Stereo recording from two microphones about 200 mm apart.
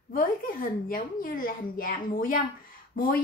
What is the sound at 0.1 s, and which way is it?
A woman's voice, 45° left (ahead or behind).